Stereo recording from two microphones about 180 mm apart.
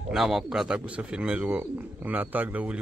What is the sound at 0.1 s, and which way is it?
Speech, centre (ahead or behind).